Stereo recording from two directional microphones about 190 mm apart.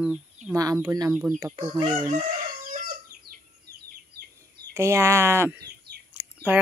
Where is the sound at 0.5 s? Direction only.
15° right (ahead or behind).